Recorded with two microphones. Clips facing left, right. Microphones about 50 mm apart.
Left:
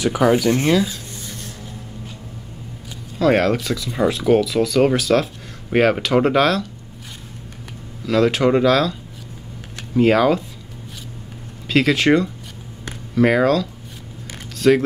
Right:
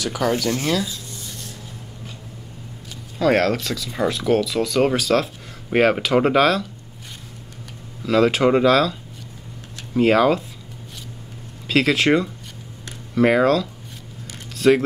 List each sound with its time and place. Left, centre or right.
0.0 s speech: centre
3.2 s speech: centre
8.0 s speech: centre
9.9 s speech: centre
11.6 s speech: centre